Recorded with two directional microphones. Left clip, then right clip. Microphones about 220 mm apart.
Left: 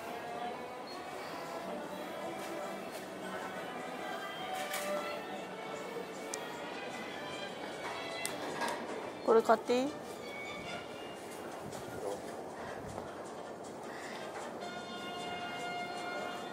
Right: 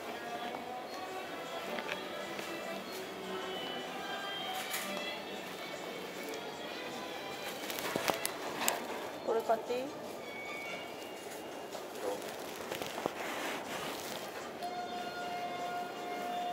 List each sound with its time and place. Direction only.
9.3 s speech: 50° left (ahead or behind)